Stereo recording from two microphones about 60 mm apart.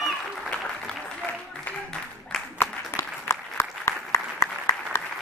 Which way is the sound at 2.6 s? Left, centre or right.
Left.